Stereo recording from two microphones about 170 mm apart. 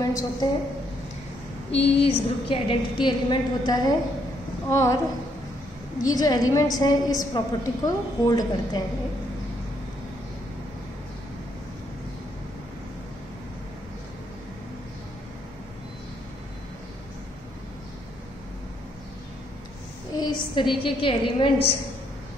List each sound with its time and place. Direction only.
0.0 s a woman's voice: 20° left (ahead or behind)
1.8 s a woman's voice: 35° left (ahead or behind); by 4.9 s 15° left (ahead or behind)
6.0 s a woman's voice: 20° left (ahead or behind)
20.2 s a woman's voice: 25° left (ahead or behind)